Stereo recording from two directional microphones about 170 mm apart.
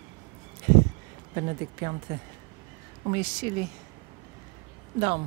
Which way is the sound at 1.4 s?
30° right (ahead or behind).